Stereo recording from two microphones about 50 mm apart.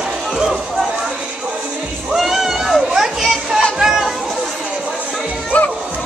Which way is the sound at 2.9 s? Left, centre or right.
Centre.